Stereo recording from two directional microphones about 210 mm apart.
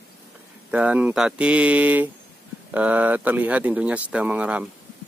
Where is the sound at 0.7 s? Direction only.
5° right (ahead or behind).